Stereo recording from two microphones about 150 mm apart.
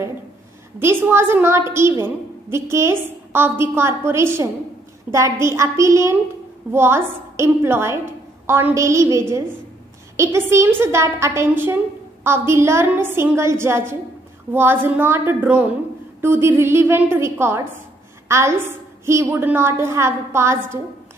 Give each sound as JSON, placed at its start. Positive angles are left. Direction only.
{"t": 0.7, "sound": "a woman's voice", "side_deg": -15}